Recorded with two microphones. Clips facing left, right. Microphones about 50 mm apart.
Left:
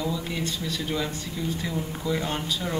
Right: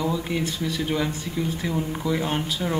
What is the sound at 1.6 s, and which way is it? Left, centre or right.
Speech, centre.